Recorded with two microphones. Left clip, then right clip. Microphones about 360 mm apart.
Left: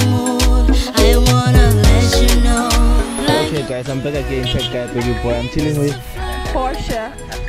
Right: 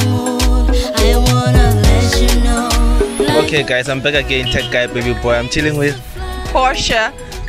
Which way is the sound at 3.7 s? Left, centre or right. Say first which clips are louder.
Right 7 dB; right.